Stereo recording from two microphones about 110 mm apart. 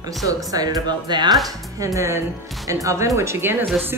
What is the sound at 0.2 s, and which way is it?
Speech, 30° right (ahead or behind).